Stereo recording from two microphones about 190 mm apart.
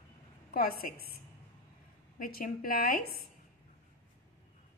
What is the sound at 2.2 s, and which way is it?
Speech, 50° left (ahead or behind).